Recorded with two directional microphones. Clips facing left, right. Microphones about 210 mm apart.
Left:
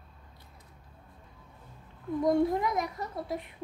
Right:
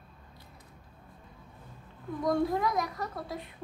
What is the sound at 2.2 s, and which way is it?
A child's voice, 25° left (ahead or behind).